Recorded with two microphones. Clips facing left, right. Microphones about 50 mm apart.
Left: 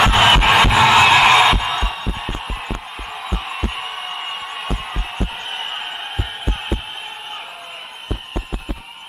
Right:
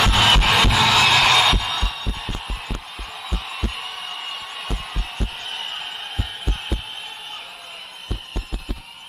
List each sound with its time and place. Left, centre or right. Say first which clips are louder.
0.0 s music: left 4 dB; centre
2.4 s a sound: left 5 dB; centre
3.3 s heart sounds: left 4 dB; centre
3.7 s heart murmur: left 4 dB; centre
5.5 s heart sounds: left 4 dB; centre